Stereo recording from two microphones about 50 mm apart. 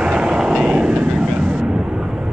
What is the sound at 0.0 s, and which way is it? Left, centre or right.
Vehicle, right.